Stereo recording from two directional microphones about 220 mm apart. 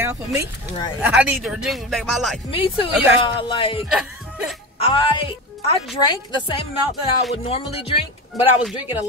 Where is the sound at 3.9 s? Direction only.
Centre (ahead or behind).